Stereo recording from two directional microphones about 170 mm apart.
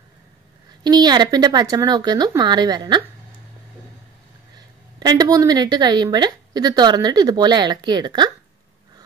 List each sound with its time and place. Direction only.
0.8 s a woman's voice: 25° right (ahead or behind)
4.6 s a woman's voice: 25° right (ahead or behind)